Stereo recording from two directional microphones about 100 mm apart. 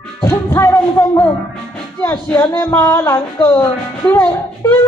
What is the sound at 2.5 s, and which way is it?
Speech, 30° left (ahead or behind).